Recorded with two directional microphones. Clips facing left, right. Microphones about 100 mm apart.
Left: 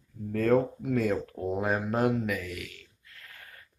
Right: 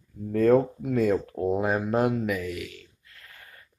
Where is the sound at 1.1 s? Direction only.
30° right (ahead or behind).